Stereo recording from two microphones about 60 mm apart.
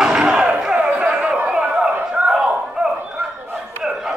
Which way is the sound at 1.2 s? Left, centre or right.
Right.